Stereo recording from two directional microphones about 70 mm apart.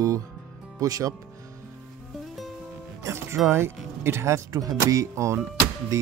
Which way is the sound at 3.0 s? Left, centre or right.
Right.